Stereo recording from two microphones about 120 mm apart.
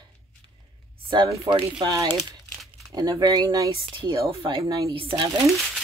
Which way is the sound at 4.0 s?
45° right (ahead or behind).